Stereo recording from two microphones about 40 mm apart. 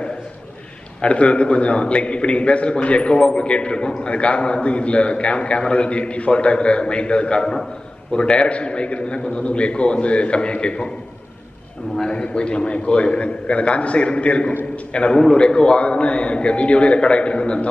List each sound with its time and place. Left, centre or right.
1.0 s a man's voice: left
12.1 s a man's voice: left